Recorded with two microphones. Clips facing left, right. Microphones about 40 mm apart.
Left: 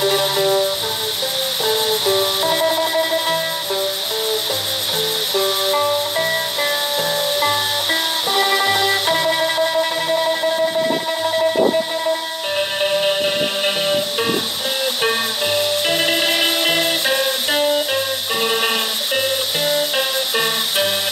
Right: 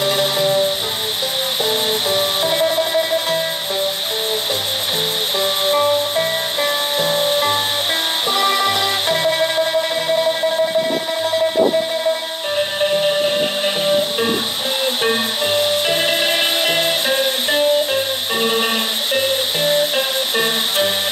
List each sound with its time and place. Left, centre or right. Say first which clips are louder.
0.2 s music: right 1 dB; left
1.6 s music: left 1 dB; right
5.3 s music: right 1 dB; right
8.6 s music: left 1 dB; right
15.8 s music: right 1 dB; right
17.1 s music: right 1 dB; left
19.6 s music: right 3 dB; right